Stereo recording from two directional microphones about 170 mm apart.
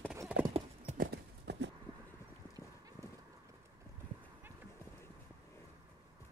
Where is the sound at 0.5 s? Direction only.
45° right (ahead or behind).